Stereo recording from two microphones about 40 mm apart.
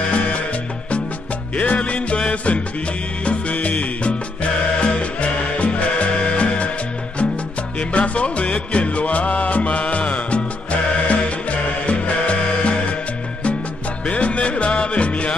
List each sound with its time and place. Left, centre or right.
0.1 s music: left
1.6 s music: left
7.9 s music: left
14.0 s music: left